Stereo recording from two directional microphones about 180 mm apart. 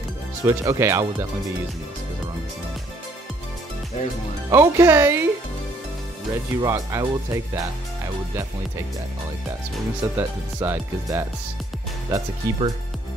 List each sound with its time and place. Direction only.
0.4 s speech: 15° right (ahead or behind)
4.5 s speech: 15° right (ahead or behind)
6.3 s speech: 15° right (ahead or behind)
10.1 s speech: 10° right (ahead or behind)
12.1 s speech: 20° right (ahead or behind)